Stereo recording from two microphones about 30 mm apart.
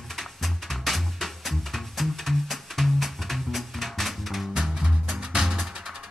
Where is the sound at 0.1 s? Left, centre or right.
Centre.